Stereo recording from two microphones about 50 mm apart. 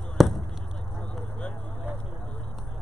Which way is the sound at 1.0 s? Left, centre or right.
Centre.